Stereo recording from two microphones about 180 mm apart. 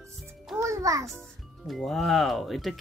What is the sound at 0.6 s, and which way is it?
Music, 15° right (ahead or behind).